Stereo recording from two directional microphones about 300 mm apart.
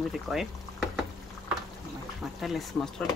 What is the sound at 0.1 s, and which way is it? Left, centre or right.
Speech, centre.